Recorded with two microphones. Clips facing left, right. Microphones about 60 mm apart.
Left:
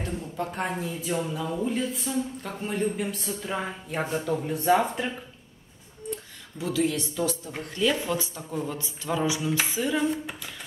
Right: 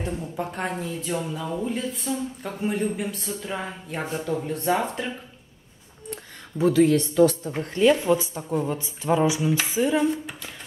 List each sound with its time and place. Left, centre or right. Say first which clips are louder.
0.0 s speech: right 2 dB; centre
0.5 s speech: right 1 dB; centre
6.6 s a woman's voice: right 8 dB; right
7.6 s speech: right 7 dB; right
9.9 s speech: right 3 dB; centre